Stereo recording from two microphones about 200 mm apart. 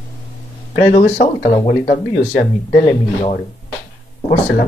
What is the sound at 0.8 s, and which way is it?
Speech, 40° left (ahead or behind).